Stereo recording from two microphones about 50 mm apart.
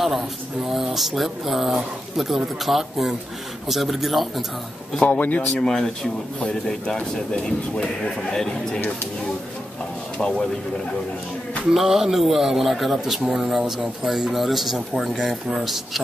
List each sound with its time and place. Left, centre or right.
0.7 s speech: centre
5.0 s speech: left
5.5 s speech: centre
10.1 s speech: centre
11.7 s speech: centre